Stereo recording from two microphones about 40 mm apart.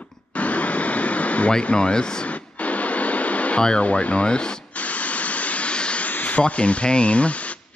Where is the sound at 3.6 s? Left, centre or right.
Left.